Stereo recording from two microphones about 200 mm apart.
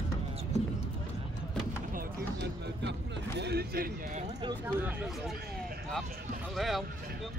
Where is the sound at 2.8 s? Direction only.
60° right (ahead or behind).